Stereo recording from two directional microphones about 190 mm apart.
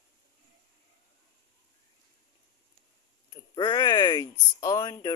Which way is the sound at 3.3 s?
20° left (ahead or behind).